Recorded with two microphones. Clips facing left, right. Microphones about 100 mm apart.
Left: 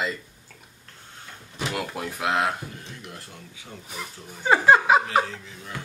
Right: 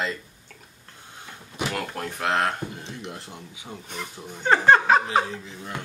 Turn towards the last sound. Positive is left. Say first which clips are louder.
# right 3 dB
turn(degrees=-20)  # may be behind; listen again after turning